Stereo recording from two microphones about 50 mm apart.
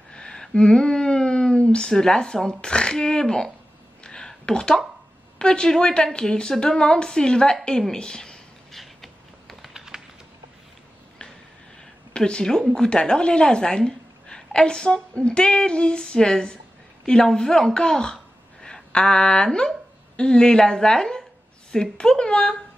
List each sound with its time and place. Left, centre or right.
0.1 s a sound: centre
2.6 s a woman's voice: centre
4.0 s a sound: centre
5.4 s a woman's voice: centre
8.7 s typing: centre
9.8 s typing: centre
12.2 s a woman's voice: centre